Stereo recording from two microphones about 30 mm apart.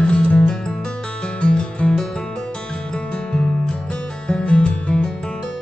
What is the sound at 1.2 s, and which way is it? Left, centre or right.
Music, left.